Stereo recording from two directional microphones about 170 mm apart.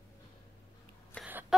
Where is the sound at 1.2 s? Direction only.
5° left (ahead or behind).